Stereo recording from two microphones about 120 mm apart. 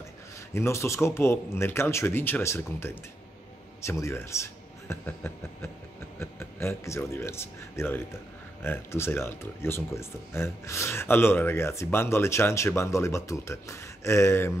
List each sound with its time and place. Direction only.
0.6 s a man's voice: 25° left (ahead or behind)